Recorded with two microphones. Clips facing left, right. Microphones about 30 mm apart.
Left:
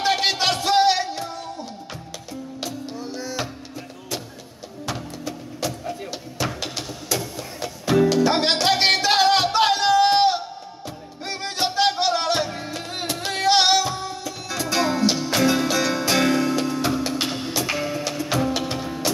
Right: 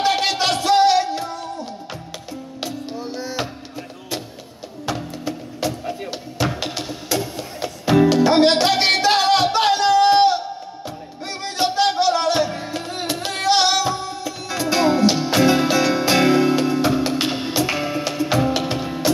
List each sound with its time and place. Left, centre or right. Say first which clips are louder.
0.0 s music: right 2 dB; centre
2.6 s music: right 4 dB; centre
5.6 s music: right 4 dB; right
6.4 s a sound: right 4 dB; centre
7.2 s music: right 4 dB; centre
8.3 s music: right 5 dB; centre
12.0 s music: right 4 dB; centre
13.8 s music: right 4 dB; centre